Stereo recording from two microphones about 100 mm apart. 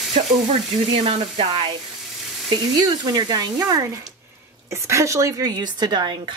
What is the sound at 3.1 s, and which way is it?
Speech, 45° right (ahead or behind).